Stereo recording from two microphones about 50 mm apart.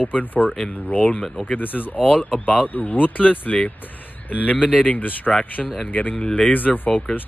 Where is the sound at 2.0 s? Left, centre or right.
Left.